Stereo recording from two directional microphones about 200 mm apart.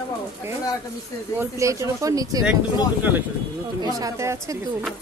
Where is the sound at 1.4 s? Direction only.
15° right (ahead or behind).